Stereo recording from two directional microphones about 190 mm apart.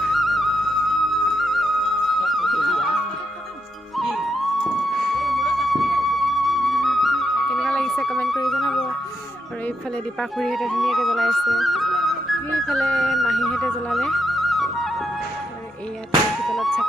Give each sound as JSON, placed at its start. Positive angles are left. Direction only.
{"t": 0.0, "sound": "music", "side_deg": 0}
{"t": 10.3, "sound": "music", "side_deg": 0}
{"t": 16.4, "sound": "music", "side_deg": 0}